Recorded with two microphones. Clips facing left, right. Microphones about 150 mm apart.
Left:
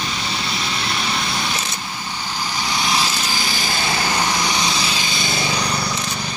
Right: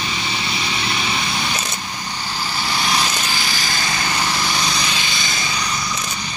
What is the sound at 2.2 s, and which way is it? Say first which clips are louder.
Vehicle: even; 15° left (ahead or behind).